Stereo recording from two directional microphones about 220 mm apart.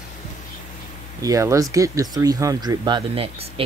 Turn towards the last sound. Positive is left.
turn(degrees=-25)  # may be behind; listen again after turning